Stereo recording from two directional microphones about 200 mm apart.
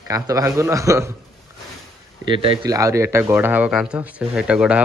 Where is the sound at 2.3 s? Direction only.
25° right (ahead or behind).